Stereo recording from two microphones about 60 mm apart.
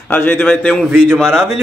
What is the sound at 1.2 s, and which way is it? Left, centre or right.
Speech, centre.